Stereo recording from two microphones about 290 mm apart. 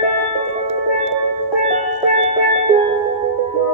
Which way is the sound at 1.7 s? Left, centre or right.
Right.